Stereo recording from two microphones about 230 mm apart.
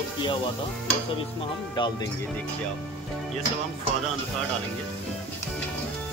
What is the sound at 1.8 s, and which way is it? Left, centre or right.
Speech, left.